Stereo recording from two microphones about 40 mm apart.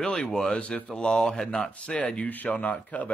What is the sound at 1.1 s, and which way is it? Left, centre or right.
Speech, centre.